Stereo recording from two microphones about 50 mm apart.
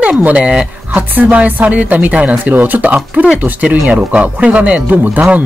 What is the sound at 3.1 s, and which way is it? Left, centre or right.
Speech, right.